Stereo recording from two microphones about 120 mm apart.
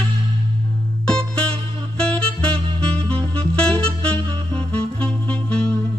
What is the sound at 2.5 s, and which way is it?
Music, 50° right (ahead or behind).